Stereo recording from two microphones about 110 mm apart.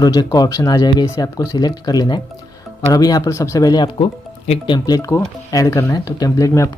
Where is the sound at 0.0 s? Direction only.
35° left (ahead or behind).